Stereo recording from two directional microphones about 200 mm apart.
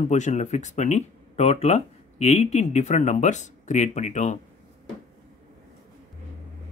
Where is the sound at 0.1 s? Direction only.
35° left (ahead or behind).